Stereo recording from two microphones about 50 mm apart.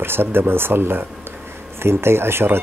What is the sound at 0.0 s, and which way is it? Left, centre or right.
Speech, right.